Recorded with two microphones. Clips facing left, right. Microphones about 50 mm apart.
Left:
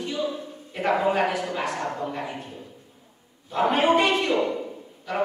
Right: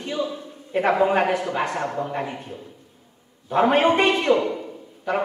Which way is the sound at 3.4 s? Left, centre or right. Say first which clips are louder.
Right 3 dB; right.